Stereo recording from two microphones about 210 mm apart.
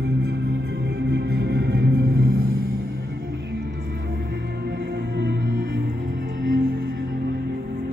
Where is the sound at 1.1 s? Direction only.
50° right (ahead or behind).